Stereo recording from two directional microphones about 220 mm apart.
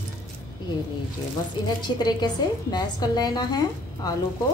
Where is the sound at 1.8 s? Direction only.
20° left (ahead or behind).